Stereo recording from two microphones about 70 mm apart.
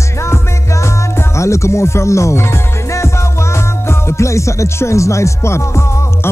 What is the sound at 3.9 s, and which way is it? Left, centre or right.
Speech, left.